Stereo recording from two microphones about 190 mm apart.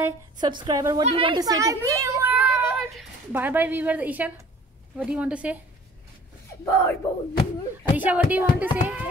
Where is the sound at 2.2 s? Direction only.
10° right (ahead or behind).